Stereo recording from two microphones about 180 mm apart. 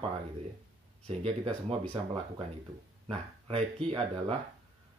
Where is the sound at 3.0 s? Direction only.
30° right (ahead or behind).